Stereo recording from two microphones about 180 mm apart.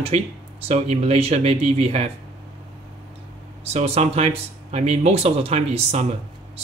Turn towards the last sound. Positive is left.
turn(degrees=-40)  # may be behind; listen again after turning